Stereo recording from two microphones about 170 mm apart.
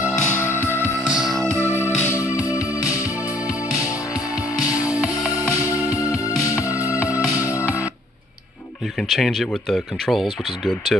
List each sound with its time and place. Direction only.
0.1 s music: 10° left (ahead or behind)
0.9 s music: centre (ahead or behind)
1.5 s music: 15° right (ahead or behind)
1.8 s music: 15° left (ahead or behind)
4.6 s music: 20° left (ahead or behind)
9.1 s speech: centre (ahead or behind)